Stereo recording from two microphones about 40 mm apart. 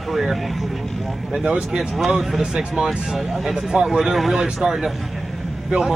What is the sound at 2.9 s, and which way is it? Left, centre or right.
Speech, centre.